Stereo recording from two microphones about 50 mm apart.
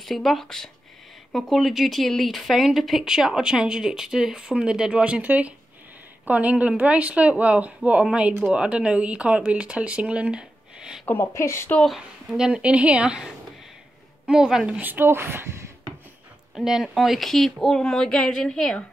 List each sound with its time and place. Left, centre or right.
0.0 s speech: centre; by 5.2 s right
5.2 s a woman's voice: right; by 11.0 s centre
11.1 s a woman's voice: left
12.3 s speech: centre
12.6 s speech: right
14.8 s speech: right
16.5 s a woman's voice: centre